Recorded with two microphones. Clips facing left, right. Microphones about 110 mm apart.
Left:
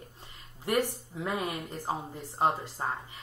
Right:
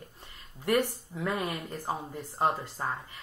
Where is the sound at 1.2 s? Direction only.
20° left (ahead or behind).